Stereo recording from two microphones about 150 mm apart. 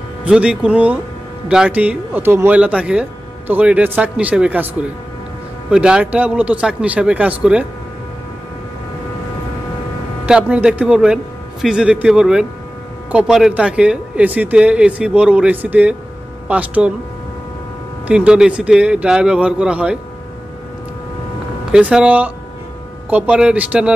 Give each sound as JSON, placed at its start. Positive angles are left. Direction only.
{"t": 0.2, "sound": "speech", "side_deg": -10}
{"t": 10.2, "sound": "speech", "side_deg": -5}
{"t": 18.0, "sound": "speech", "side_deg": -5}
{"t": 21.7, "sound": "speech", "side_deg": -10}